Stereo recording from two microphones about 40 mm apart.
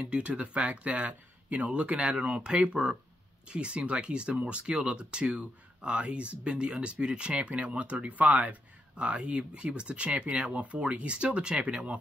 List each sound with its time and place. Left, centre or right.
0.0 s speech: right
8.9 s speech: right